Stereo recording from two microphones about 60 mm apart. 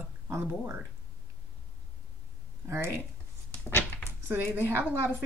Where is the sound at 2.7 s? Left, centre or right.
Right.